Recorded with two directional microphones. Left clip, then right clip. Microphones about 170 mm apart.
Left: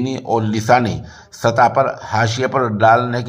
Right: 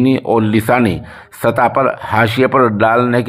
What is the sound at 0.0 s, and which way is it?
Speech, 20° right (ahead or behind).